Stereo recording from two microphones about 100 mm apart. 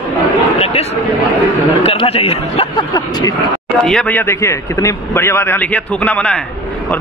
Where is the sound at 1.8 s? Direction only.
85° left.